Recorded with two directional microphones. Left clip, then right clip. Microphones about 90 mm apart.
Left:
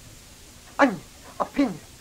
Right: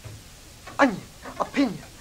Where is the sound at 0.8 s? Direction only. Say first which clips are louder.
Left 1 dB; 25° right (ahead or behind).